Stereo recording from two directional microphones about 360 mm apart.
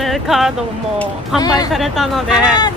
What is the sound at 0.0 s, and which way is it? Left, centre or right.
Speech, centre.